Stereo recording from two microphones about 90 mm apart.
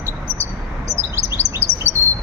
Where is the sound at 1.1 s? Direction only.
30° right (ahead or behind).